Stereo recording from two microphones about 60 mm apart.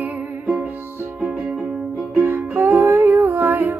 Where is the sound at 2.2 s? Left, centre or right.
Right.